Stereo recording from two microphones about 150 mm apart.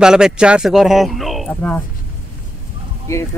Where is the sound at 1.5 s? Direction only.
10° left (ahead or behind).